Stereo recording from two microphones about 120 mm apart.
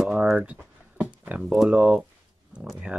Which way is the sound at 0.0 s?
Centre (ahead or behind).